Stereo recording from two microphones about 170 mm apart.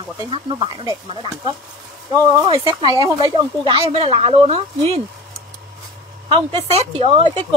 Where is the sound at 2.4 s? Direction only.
30° right (ahead or behind).